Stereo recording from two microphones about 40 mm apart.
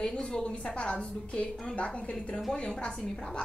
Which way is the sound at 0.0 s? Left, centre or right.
Left.